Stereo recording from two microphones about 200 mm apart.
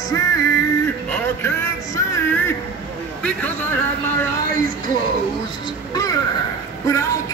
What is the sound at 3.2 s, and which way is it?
Speech, 5° left (ahead or behind).